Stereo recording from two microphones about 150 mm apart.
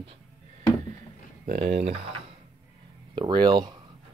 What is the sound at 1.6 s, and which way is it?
Speech, 45° right (ahead or behind).